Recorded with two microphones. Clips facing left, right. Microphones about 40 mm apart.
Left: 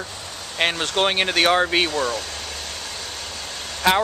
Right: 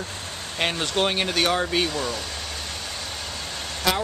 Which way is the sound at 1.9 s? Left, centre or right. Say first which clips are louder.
Left 5 dB; centre.